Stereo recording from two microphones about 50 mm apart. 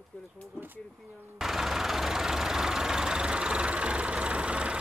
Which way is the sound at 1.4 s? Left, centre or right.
Centre.